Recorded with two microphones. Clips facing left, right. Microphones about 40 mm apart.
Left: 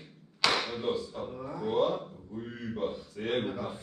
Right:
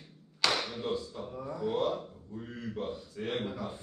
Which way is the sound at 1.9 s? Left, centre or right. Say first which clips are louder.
Left 1 dB; left.